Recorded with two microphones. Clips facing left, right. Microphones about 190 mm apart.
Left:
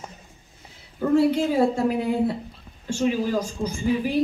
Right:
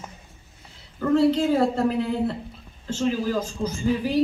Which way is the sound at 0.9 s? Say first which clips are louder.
Even; 10° left (ahead or behind).